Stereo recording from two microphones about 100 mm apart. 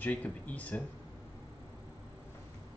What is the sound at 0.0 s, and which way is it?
Speech, 15° left (ahead or behind).